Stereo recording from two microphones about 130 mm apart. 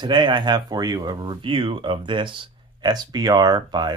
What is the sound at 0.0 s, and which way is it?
Speech, 35° right (ahead or behind).